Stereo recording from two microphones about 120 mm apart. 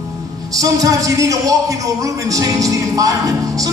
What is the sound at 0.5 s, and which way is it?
Speech, 30° right (ahead or behind).